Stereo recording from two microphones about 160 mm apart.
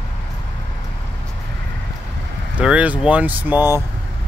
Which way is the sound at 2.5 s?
10° right (ahead or behind).